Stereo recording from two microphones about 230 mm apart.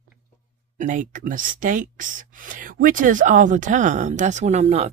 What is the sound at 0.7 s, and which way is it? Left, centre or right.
Speech, right.